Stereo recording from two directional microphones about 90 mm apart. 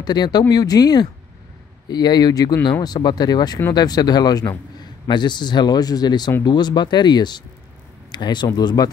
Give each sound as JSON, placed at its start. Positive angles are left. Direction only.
{"t": 0.0, "sound": "speech", "side_deg": 50}